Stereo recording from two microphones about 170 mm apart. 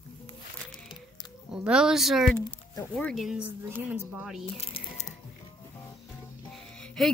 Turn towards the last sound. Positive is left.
turn(degrees=5)  # may be behind; listen again after turning